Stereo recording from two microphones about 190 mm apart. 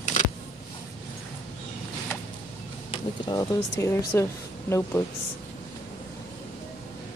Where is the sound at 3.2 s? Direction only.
20° left (ahead or behind).